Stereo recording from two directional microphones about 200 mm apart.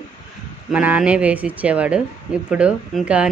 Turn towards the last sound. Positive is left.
turn(degrees=-5)  # may be behind; listen again after turning